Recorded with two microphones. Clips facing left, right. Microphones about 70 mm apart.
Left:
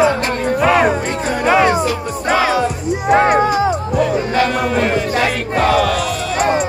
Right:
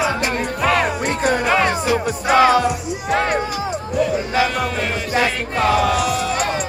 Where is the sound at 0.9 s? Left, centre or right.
Left.